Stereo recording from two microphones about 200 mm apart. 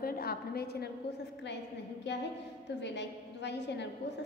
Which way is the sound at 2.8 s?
60° left (ahead or behind).